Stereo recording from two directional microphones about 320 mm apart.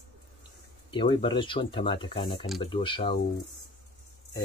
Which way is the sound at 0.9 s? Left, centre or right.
Centre.